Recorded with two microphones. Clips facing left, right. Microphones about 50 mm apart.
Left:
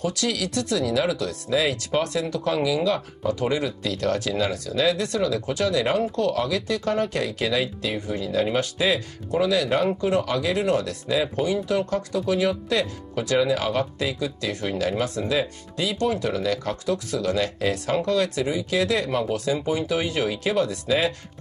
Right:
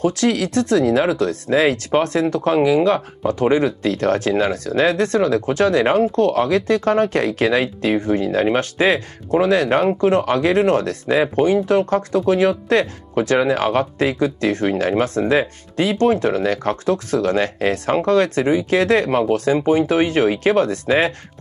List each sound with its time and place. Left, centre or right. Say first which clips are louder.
0.0 s speech: right 8 dB; right